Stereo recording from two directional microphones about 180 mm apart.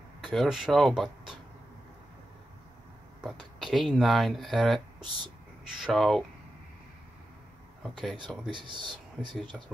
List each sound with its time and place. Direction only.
0.3 s speech: centre (ahead or behind)
3.2 s speech: centre (ahead or behind)
8.5 s speech: 25° right (ahead or behind)